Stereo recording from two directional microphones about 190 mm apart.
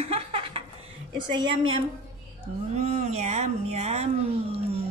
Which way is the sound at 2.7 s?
35° right (ahead or behind).